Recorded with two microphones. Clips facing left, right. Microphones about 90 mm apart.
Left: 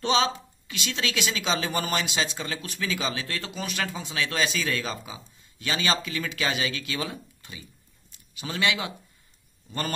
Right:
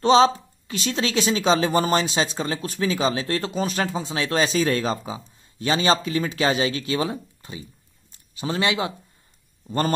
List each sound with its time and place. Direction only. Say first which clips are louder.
0.0 s a woman's voice: right 8 dB; 35° right (ahead or behind)